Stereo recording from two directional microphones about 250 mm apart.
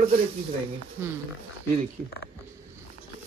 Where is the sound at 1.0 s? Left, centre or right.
Centre.